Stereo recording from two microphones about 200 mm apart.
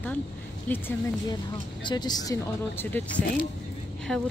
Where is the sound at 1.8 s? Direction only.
20° left (ahead or behind).